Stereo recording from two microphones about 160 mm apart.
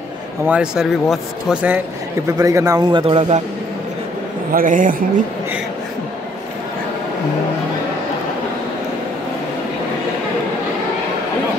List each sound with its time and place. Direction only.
0.5 s speech: 5° right (ahead or behind)
2.2 s a man's voice: 20° right (ahead or behind); by 3.4 s 40° right (ahead or behind)
4.5 s a man's voice: 55° right (ahead or behind)